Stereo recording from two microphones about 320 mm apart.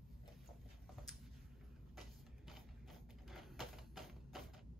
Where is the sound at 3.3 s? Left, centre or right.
Centre.